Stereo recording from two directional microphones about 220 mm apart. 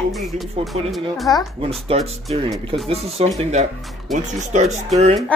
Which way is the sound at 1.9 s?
30° right (ahead or behind).